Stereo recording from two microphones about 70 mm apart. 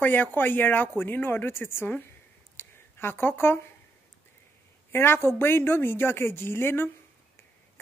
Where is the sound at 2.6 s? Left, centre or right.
Left.